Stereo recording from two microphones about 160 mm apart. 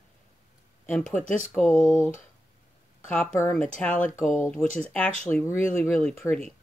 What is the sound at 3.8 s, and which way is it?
Speech, 10° left (ahead or behind).